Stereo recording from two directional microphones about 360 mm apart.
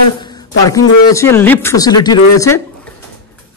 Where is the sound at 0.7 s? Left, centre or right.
Centre.